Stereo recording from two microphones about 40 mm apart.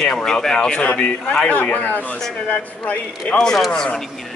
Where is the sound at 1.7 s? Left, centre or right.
Left.